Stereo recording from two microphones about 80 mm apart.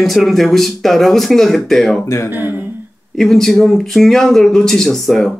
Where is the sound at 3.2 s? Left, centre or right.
Centre.